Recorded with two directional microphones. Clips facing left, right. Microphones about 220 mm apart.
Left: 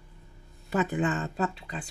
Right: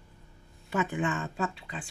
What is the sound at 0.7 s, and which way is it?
Speech, 35° left (ahead or behind).